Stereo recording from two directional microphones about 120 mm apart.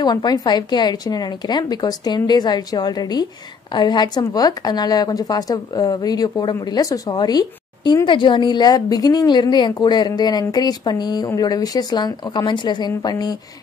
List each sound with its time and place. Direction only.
0.0 s speech: 35° left (ahead or behind)